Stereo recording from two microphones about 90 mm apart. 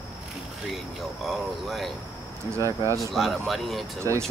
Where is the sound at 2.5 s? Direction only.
35° right (ahead or behind).